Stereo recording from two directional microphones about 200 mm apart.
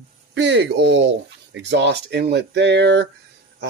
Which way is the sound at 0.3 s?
60° right (ahead or behind).